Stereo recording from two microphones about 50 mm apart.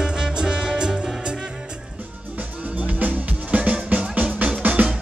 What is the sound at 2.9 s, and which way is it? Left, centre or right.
Music, right.